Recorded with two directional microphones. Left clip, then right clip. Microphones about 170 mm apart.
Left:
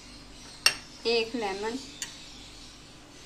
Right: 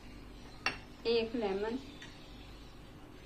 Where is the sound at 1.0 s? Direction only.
50° left (ahead or behind).